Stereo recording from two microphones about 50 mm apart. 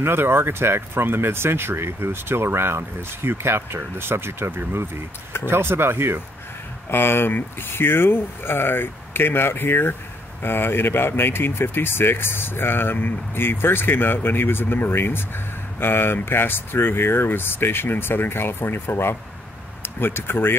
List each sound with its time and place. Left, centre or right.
0.0 s speech: right
6.9 s speech: left